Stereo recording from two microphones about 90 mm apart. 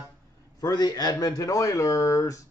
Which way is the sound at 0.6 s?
45° left (ahead or behind).